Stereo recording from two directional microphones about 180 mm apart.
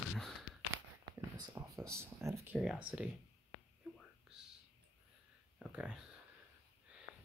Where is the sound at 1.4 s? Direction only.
20° right (ahead or behind).